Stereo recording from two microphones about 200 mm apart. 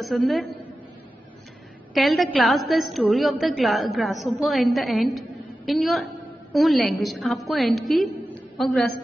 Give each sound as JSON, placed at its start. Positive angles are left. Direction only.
{"t": 0.0, "sound": "a woman's voice", "side_deg": 0}
{"t": 2.0, "sound": "a woman's voice", "side_deg": 0}